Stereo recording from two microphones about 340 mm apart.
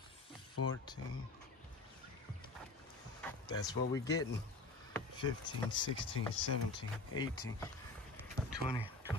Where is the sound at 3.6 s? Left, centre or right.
Centre.